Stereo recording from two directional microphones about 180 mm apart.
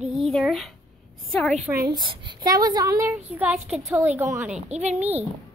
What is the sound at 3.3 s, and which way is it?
A woman's voice, 5° right (ahead or behind).